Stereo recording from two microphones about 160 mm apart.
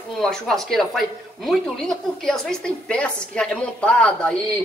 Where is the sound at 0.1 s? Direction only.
Centre (ahead or behind).